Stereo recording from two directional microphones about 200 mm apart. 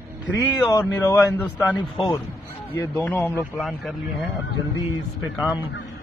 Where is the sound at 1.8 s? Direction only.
20° left (ahead or behind).